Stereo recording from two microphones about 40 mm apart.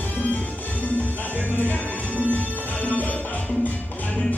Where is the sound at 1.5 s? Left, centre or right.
Left.